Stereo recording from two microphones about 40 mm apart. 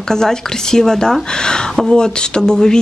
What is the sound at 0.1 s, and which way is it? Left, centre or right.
Speech, centre.